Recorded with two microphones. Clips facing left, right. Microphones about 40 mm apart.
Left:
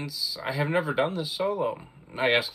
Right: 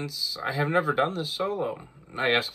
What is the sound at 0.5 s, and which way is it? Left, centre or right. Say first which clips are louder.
Speech: right 2 dB; left.